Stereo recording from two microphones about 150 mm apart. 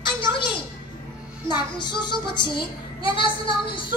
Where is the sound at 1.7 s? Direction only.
30° left (ahead or behind).